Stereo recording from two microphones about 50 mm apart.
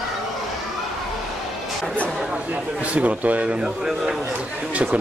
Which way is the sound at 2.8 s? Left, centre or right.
Right.